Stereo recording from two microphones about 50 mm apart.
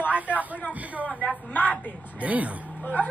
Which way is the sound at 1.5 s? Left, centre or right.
Left.